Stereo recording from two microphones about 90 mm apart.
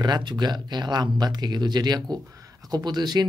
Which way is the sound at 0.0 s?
55° right (ahead or behind).